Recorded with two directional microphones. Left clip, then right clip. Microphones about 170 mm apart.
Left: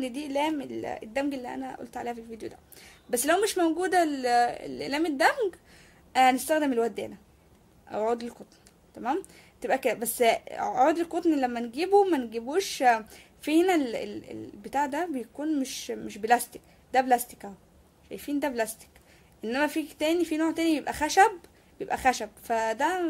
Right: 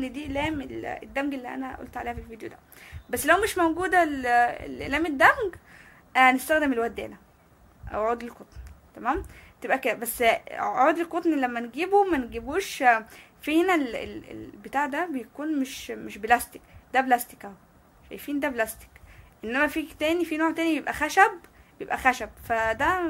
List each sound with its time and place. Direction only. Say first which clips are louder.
0.0 s a woman's voice: left 1 dB; 35° left (ahead or behind)